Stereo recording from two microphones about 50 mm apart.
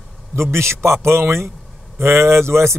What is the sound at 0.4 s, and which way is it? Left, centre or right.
Speech, right.